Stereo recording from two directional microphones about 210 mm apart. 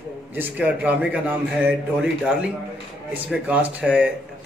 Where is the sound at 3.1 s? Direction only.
5° right (ahead or behind).